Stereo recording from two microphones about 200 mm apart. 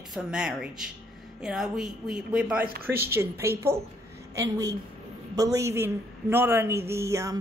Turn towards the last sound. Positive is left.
turn(degrees=-15)  # may be behind; listen again after turning